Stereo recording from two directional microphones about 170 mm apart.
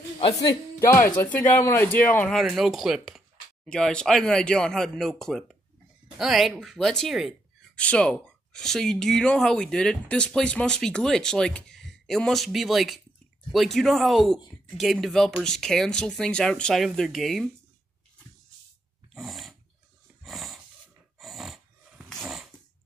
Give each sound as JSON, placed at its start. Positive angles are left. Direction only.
{"t": 0.3, "sound": "speech", "side_deg": 20}
{"t": 2.3, "sound": "speech", "side_deg": 0}
{"t": 19.1, "sound": "dog", "side_deg": 0}
{"t": 20.2, "sound": "a sound", "side_deg": 0}
{"t": 21.2, "sound": "dog", "side_deg": 0}